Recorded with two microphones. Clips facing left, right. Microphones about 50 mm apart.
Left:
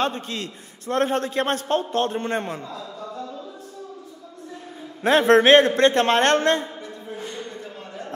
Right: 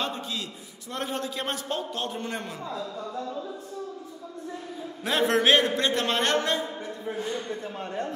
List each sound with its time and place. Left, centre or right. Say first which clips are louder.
0.0 s a man's voice: left 6 dB; left
5.0 s a man's voice: left 7 dB; left